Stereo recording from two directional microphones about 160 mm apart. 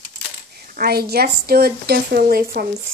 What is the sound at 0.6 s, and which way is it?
A woman's voice, 75° right (ahead or behind).